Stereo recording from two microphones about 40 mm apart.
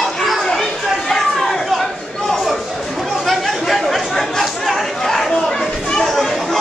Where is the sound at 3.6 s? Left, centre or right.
Centre.